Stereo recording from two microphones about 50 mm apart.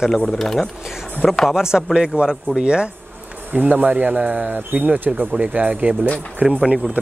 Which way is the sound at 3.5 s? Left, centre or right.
Right.